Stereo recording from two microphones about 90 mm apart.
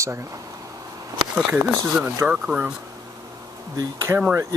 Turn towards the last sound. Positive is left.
turn(degrees=-20)  # may be behind; listen again after turning